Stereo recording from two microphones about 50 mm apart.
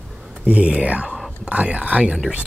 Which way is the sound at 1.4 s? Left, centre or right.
Right.